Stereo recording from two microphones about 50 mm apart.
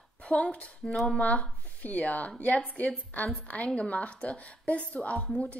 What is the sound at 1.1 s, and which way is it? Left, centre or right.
A woman's voice, left.